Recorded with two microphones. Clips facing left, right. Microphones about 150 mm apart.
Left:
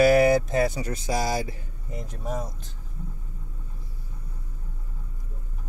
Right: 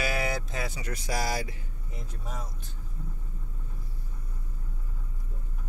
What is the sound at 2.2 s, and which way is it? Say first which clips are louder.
Speech: left 10 dB; 50° left (ahead or behind).